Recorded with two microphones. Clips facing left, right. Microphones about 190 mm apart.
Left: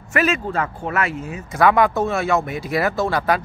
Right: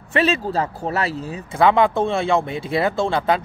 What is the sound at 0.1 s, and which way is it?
Speech, 30° right (ahead or behind).